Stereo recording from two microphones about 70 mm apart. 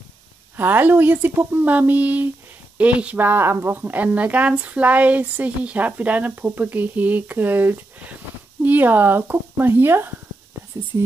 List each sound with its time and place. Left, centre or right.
0.6 s a woman's voice: right